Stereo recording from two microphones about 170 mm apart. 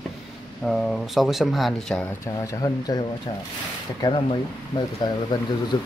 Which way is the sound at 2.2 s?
20° left (ahead or behind).